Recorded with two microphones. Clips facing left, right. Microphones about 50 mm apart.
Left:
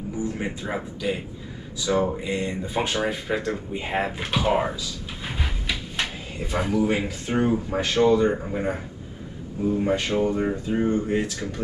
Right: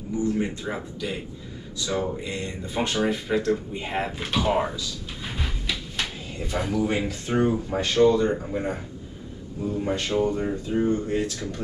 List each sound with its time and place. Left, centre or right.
0.3 s speech: centre